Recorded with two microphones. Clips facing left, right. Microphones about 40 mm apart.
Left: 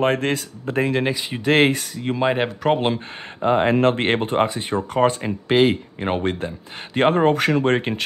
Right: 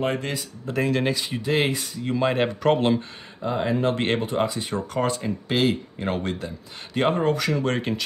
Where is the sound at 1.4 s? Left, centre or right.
Left.